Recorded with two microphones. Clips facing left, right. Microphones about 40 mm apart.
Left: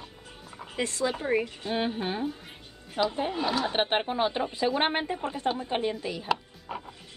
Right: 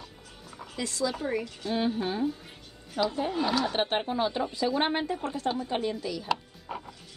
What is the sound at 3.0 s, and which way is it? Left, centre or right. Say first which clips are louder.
Speech: left 1 dB; left.